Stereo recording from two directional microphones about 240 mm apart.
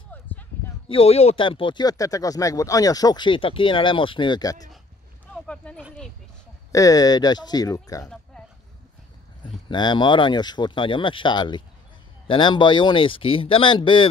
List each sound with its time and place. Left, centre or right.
0.1 s a sound: centre
0.8 s speech: left
5.3 s speech: centre
6.7 s speech: centre
9.7 s speech: centre